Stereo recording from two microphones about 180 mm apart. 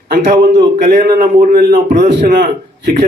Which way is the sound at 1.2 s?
55° right (ahead or behind).